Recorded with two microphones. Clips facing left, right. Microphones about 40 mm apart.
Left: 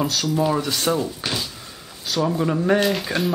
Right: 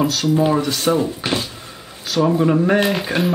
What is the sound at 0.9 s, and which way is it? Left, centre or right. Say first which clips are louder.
Speech: right 5 dB; right.